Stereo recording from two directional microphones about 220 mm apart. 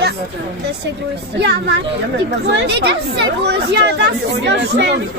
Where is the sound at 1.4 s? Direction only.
50° right (ahead or behind).